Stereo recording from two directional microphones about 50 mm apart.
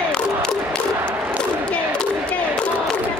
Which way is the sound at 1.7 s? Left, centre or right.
Left.